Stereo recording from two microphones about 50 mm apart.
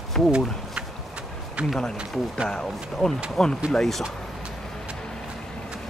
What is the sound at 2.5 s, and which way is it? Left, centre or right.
Speech, centre.